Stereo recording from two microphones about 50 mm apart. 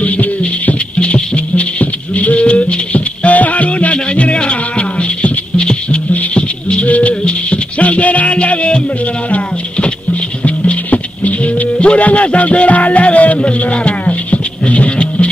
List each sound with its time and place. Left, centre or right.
0.0 s music: left
0.9 s rattle: left
5.7 s music: centre
10.4 s music: left